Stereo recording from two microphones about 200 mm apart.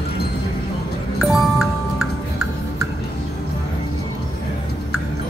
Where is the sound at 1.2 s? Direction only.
Centre (ahead or behind).